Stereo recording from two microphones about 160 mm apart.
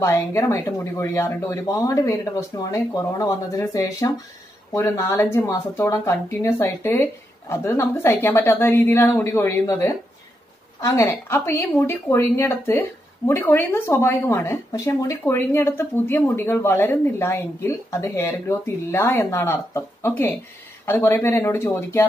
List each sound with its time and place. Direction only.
0.0 s speech: 15° left (ahead or behind)